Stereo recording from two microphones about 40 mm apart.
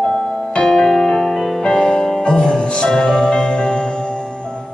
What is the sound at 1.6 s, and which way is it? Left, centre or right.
Music, left.